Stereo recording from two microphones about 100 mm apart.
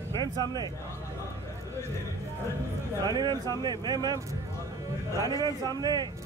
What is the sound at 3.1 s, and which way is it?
Speech, 45° right (ahead or behind).